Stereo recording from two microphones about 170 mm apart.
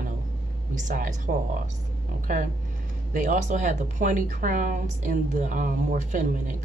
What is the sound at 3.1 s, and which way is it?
Speech, 50° right (ahead or behind).